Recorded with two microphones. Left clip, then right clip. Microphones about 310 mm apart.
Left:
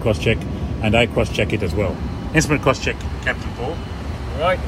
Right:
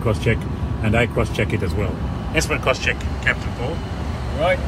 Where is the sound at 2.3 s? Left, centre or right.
Left.